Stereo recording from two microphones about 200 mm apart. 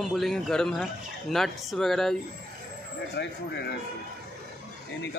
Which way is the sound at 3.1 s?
60° left (ahead or behind).